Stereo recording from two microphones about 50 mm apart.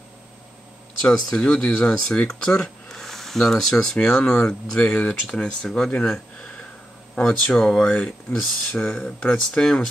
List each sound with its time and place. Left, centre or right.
1.0 s speech: centre
7.8 s speech: left
8.3 s speech: centre
8.8 s speech: left
9.3 s speech: centre